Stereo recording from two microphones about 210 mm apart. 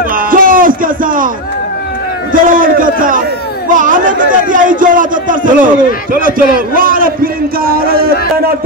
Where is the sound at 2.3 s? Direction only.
40° right (ahead or behind).